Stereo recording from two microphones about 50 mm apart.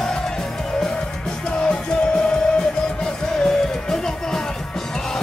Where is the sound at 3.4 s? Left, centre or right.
Centre.